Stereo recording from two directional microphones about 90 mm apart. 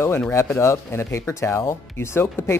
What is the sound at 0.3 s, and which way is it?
Speech, 35° left (ahead or behind).